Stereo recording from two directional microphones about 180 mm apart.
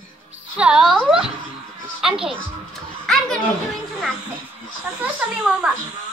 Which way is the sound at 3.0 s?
5° left (ahead or behind).